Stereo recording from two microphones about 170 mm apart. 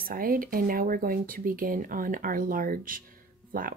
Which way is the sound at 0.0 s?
60° right (ahead or behind).